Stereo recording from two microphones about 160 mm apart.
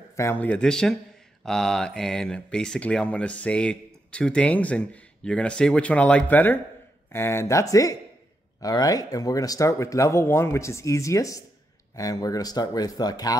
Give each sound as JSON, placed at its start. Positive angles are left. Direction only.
{"t": 0.1, "sound": "speech", "side_deg": 15}